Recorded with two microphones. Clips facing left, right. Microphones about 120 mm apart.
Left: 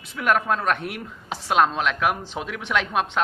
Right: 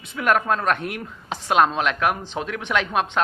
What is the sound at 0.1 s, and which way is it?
Speech, centre (ahead or behind).